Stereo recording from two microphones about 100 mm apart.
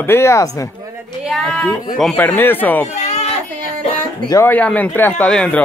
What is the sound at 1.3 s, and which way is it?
Speech, 5° left (ahead or behind).